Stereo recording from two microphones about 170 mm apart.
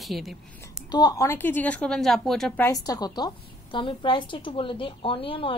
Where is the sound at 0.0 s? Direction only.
Centre (ahead or behind).